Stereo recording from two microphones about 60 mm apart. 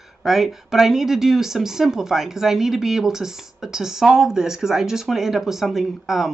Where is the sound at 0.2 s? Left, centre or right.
Centre.